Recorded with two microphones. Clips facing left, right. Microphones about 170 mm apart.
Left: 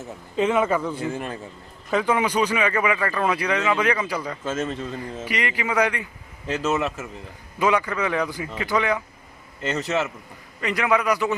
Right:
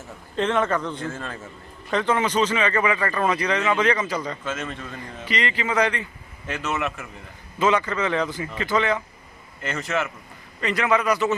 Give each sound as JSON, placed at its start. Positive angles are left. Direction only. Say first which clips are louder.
{"t": 0.4, "sound": "speech", "louder": "left 2 dB", "side_deg": 10}
{"t": 4.5, "sound": "a man's voice", "louder": "left 4 dB", "side_deg": 30}
{"t": 5.2, "sound": "speech", "louder": "right 2 dB", "side_deg": 10}
{"t": 6.4, "sound": "a man's voice", "louder": "left 4 dB", "side_deg": 30}
{"t": 7.5, "sound": "speech", "louder": "even", "side_deg": 15}
{"t": 9.6, "sound": "a man's voice", "louder": "left 2 dB", "side_deg": 30}
{"t": 10.6, "sound": "speech", "louder": "even", "side_deg": 15}